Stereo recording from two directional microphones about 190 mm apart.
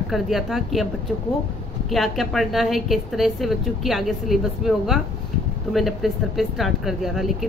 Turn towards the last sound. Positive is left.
turn(degrees=0)  # may be behind; listen again after turning